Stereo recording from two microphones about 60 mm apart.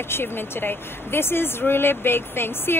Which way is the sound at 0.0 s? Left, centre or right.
Left.